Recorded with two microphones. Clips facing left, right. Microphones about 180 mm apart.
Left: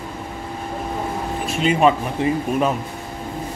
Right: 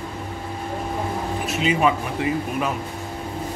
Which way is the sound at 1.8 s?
30° left (ahead or behind).